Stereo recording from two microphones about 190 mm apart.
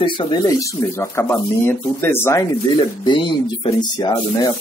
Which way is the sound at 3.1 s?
25° left (ahead or behind).